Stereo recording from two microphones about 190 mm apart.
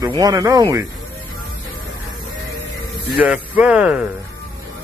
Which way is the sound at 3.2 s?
5° right (ahead or behind).